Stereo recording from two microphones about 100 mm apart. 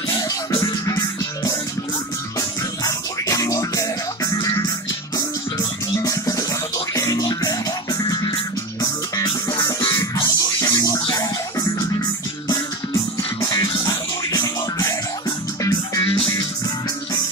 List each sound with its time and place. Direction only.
0.6 s music: 35° left (ahead or behind)
2.8 s music: 35° left (ahead or behind)
16.0 s music: 65° left (ahead or behind)